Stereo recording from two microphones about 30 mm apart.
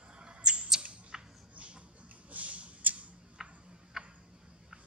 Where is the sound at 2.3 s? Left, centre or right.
Right.